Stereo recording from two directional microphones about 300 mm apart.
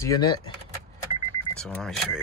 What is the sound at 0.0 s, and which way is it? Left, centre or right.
Speech, centre.